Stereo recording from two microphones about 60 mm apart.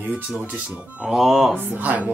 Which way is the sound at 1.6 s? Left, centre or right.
Right.